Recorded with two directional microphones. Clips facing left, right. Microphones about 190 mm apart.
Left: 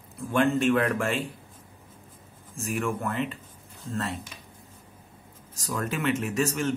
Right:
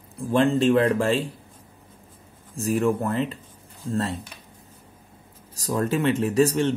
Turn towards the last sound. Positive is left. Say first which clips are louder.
# right 6 dB
turn(degrees=-30)  # may be behind; listen again after turning